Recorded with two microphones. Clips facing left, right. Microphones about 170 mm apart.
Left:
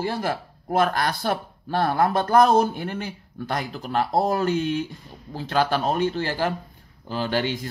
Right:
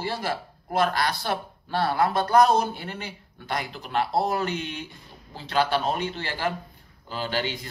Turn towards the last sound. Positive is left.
turn(degrees=50)  # may be behind; listen again after turning